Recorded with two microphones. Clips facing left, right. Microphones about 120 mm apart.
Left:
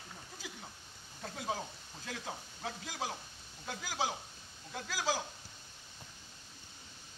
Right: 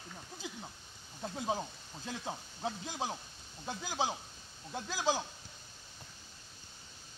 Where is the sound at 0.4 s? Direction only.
25° right (ahead or behind).